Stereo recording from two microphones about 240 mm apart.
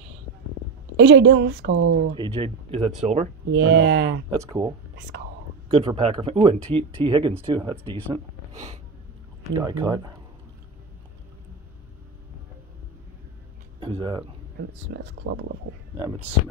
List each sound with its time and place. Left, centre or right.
0.9 s speech: right
1.8 s speech: right
2.1 s speech: right
3.4 s speech: right
4.3 s speech: centre
9.4 s speech: centre
13.7 s speech: right
15.2 s speech: right